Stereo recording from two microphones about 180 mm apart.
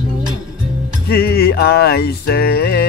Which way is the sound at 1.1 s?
60° left (ahead or behind).